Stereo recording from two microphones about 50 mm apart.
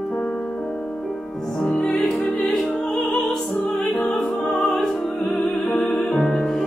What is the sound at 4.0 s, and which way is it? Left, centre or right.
Opera, centre.